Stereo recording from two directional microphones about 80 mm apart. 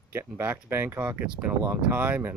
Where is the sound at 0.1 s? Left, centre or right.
Right.